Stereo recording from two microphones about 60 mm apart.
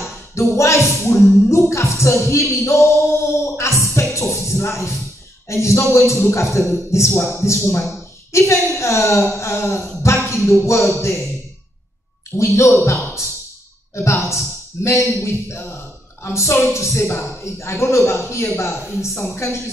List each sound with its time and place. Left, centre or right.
0.0 s speech: left
3.5 s music: left
5.5 s speech: left
10.0 s a sound: left
11.0 s speech: left
12.4 s speech: left